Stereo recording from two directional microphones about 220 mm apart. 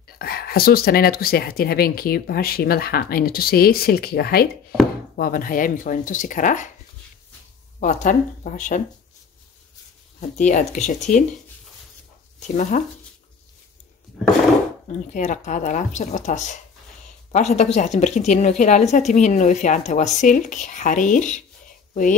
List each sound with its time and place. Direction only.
0.2 s a woman's voice: 45° left (ahead or behind)
7.8 s a woman's voice: 35° left (ahead or behind)
10.3 s a woman's voice: 35° left (ahead or behind)
12.4 s a woman's voice: 35° left (ahead or behind)
14.9 s a woman's voice: 35° left (ahead or behind)